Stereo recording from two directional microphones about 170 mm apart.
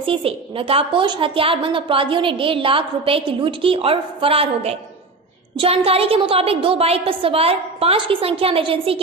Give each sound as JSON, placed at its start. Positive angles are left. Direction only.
{"t": 0.0, "sound": "a woman's voice", "side_deg": -30}